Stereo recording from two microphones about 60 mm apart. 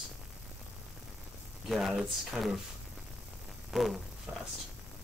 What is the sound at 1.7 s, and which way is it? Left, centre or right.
Speech, centre.